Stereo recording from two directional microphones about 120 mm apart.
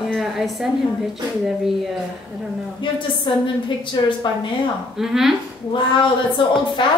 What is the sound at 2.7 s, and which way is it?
A woman's voice, 40° left (ahead or behind).